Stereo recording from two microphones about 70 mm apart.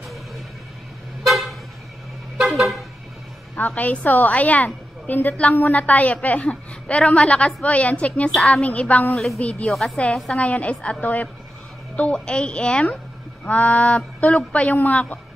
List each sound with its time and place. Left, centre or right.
1.2 s vehicle: centre
3.5 s a woman's voice: left
8.3 s a woman's voice: centre
8.6 s a woman's voice: centre
9.1 s a woman's voice: centre
9.4 s a woman's voice: centre
9.7 s a woman's voice: centre
10.4 s a woman's voice: centre